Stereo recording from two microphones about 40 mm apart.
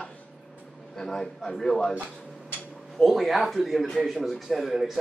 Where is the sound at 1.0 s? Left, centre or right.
Centre.